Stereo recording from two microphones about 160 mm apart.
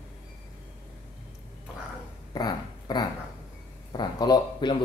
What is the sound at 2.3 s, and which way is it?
Speech, 25° left (ahead or behind).